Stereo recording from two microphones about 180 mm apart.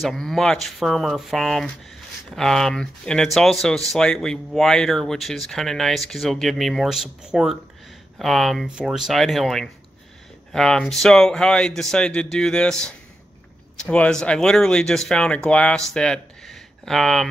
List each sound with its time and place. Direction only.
0.0 s speech: centre (ahead or behind)